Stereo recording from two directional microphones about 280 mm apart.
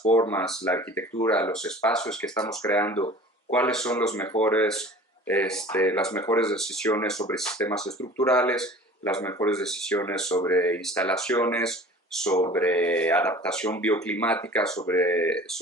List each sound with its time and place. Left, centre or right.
0.2 s speech: centre